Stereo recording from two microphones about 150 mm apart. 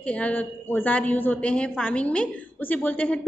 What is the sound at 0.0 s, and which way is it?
A woman's voice, 10° left (ahead or behind).